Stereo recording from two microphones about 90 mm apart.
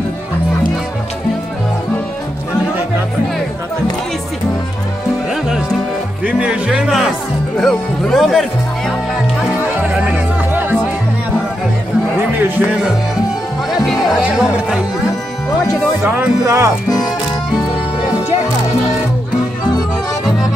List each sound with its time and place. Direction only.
5.3 s music: 5° right (ahead or behind)
7.5 s speech: 5° left (ahead or behind)
9.6 s music: 20° right (ahead or behind)
12.4 s music: 20° right (ahead or behind)
14.2 s speech: 5° right (ahead or behind)
16.2 s speech: 30° right (ahead or behind)